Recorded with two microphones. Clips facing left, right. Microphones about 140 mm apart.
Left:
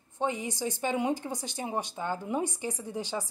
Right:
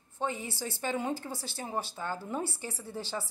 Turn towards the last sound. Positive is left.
turn(degrees=15)  # may be behind; listen again after turning